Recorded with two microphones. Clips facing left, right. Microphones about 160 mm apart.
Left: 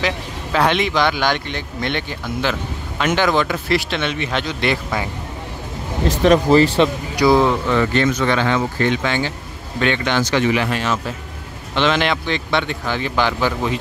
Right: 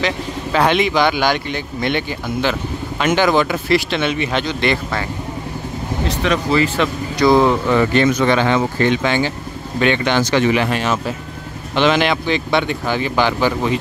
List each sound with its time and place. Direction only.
0.0 s speech: centre (ahead or behind)
6.0 s speech: 45° left (ahead or behind)
7.2 s speech: centre (ahead or behind)
7.7 s speech: 15° right (ahead or behind)
11.7 s speech: 10° right (ahead or behind)